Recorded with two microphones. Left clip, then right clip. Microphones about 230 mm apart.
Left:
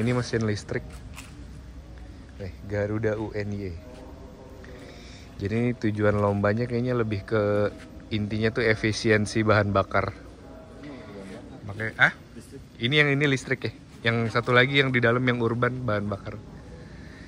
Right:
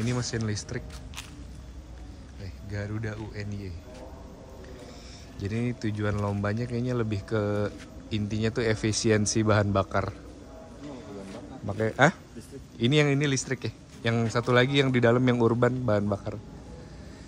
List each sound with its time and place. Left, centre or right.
0.0 s speech: centre
2.4 s speech: centre
5.4 s speech: centre
11.6 s a man's voice: right